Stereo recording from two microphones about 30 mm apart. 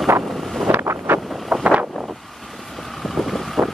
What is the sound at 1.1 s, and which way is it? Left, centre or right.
Wind noise, right.